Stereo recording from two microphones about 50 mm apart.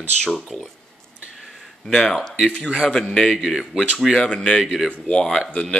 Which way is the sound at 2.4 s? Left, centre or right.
Centre.